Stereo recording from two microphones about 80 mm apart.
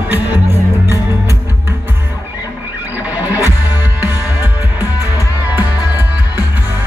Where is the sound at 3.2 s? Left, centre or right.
Right.